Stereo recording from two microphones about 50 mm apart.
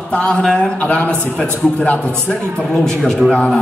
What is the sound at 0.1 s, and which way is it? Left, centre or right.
Speech, centre.